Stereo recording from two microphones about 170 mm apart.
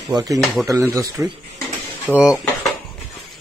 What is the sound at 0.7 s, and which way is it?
Speech, 20° right (ahead or behind).